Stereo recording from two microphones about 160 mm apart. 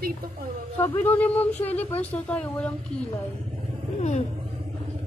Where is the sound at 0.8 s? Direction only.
10° left (ahead or behind).